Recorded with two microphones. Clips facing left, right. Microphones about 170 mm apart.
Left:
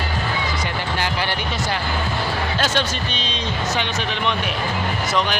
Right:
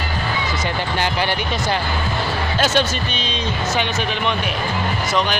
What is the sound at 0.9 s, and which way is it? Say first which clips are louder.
Speech: right 3 dB; 20° right (ahead or behind).